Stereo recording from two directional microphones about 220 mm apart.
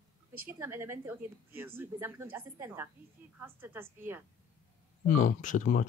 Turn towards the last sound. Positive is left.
turn(degrees=35)  # may be behind; listen again after turning